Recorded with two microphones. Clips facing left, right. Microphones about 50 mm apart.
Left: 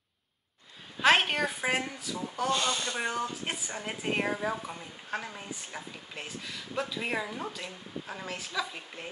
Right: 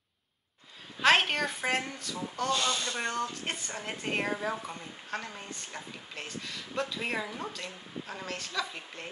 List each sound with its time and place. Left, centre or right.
1.0 s a woman's voice: centre
2.5 s speech: centre
3.0 s a woman's voice: centre